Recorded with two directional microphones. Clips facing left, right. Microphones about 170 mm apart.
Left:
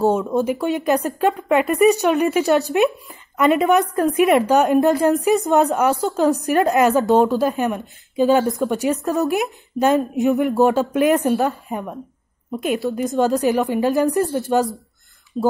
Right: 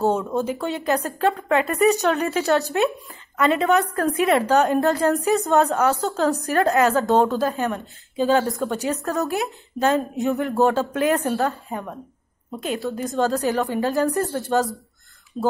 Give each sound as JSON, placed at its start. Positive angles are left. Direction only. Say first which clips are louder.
{"t": 0.3, "sound": "speech", "louder": "left 5 dB", "side_deg": 15}